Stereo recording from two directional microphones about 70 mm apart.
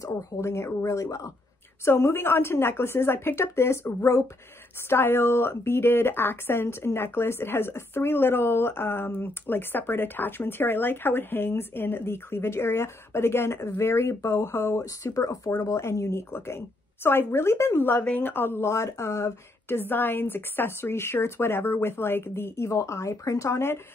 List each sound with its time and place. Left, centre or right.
0.0 s speech: left
1.9 s a woman's voice: left
15.0 s a woman's voice: left